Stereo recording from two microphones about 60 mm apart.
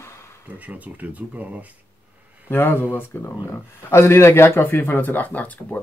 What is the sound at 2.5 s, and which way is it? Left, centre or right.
Speech, left.